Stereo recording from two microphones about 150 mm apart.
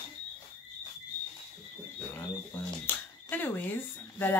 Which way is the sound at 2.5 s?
10° left (ahead or behind).